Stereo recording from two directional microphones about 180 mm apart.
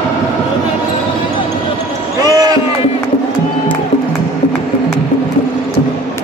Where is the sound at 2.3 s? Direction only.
20° right (ahead or behind).